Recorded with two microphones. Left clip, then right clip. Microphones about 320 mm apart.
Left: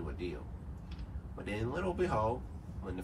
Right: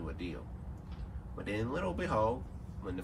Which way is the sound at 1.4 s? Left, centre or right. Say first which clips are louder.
Right 1 dB; centre.